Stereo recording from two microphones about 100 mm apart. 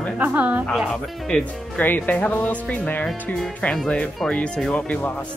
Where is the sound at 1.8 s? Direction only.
20° left (ahead or behind).